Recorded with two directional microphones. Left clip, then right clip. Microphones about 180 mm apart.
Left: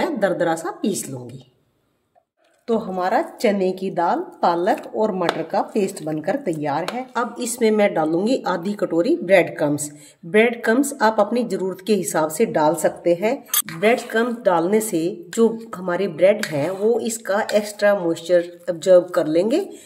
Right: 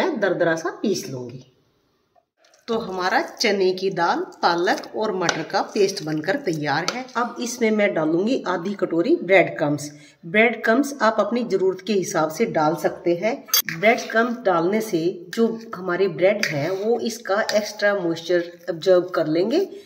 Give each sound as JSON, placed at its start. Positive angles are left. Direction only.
{"t": 0.0, "sound": "a woman's voice", "side_deg": 55}
{"t": 2.6, "sound": "a woman's voice", "side_deg": 65}
{"t": 7.2, "sound": "a woman's voice", "side_deg": 40}